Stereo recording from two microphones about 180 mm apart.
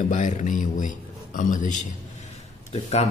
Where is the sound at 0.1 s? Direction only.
45° left (ahead or behind).